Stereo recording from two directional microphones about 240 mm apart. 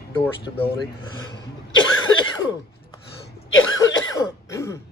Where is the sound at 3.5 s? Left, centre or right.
Left.